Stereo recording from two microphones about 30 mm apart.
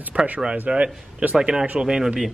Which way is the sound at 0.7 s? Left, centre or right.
Right.